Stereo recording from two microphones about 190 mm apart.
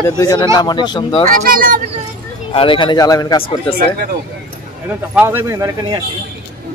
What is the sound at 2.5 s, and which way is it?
Speech, 25° left (ahead or behind).